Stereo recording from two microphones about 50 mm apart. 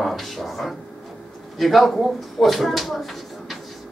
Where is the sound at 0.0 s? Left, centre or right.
Centre.